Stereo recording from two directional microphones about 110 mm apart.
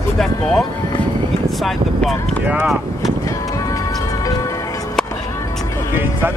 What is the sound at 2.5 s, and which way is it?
Speech, 10° right (ahead or behind).